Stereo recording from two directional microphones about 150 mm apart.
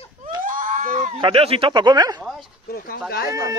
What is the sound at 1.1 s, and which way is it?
Speech, 35° right (ahead or behind).